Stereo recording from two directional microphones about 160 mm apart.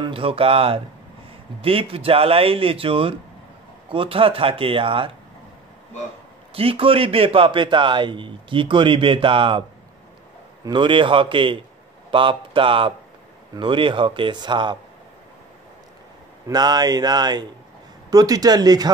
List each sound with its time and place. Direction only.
0.0 s a man's voice: 35° right (ahead or behind)
6.5 s a man's voice: 35° right (ahead or behind)
16.4 s speech: 25° right (ahead or behind)